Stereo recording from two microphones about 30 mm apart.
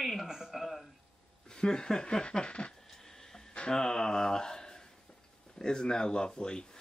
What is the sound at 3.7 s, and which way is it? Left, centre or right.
Speech, centre.